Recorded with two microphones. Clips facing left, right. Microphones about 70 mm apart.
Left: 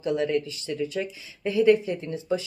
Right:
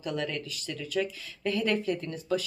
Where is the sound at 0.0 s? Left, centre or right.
Left.